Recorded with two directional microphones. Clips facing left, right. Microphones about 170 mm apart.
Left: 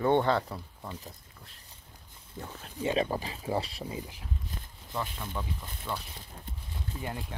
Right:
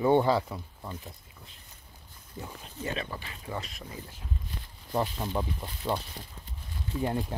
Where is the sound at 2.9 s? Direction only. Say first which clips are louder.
Left 8 dB; 35° left (ahead or behind).